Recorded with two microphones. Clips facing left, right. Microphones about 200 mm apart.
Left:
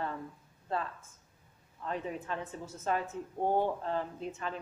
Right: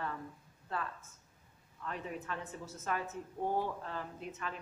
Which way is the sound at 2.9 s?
30° left (ahead or behind).